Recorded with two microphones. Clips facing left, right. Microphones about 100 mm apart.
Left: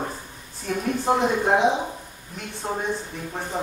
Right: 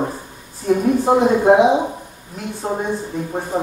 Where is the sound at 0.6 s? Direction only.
5° right (ahead or behind).